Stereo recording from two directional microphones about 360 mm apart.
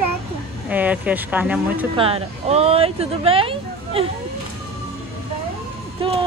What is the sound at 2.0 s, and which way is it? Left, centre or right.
Speech, centre.